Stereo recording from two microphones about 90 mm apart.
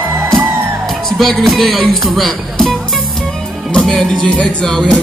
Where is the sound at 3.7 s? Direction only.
5° left (ahead or behind).